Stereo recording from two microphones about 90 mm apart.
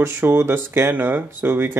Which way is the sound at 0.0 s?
25° right (ahead or behind).